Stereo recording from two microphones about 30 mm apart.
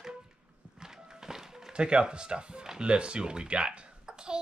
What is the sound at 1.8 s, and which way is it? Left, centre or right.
Speech, right.